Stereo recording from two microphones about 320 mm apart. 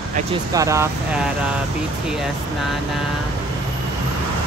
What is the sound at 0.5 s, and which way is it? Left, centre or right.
Speech, centre.